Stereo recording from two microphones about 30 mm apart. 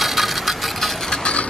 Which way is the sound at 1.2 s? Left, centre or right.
Left.